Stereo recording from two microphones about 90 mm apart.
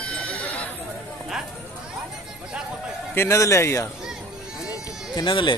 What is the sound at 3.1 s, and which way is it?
Speech, 30° left (ahead or behind).